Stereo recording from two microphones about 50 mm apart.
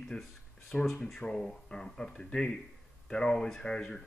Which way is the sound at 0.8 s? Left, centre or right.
Centre.